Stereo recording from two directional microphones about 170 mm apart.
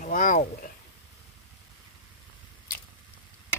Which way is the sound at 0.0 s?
55° left (ahead or behind).